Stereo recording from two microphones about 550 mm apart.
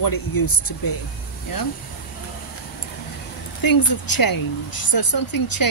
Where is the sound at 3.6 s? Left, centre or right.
Left.